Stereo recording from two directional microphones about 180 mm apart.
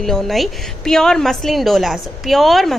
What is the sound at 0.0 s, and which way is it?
A woman's voice, centre (ahead or behind).